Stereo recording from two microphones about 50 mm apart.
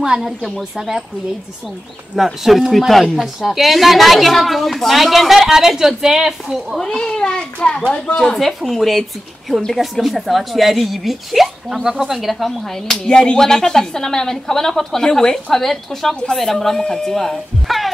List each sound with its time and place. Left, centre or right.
0.0 s speech: centre
2.1 s speech: centre
6.8 s children playing: centre
7.9 s speech: centre
8.4 s speech: centre
12.9 s speech: centre